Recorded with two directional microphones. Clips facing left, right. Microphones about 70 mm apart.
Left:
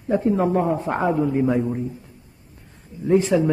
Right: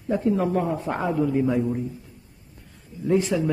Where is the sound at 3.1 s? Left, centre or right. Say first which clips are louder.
Left 4 dB; left.